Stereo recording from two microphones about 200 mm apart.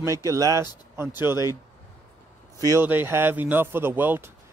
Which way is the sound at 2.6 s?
15° right (ahead or behind).